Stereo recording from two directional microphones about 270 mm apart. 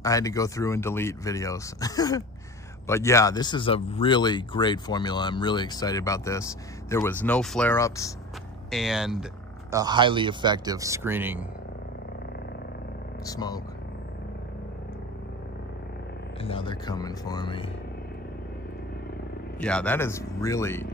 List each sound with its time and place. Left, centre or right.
0.0 s speech: centre
8.6 s speech: centre
9.8 s a man's voice: centre
13.2 s speech: centre
16.3 s speech: centre
19.6 s speech: centre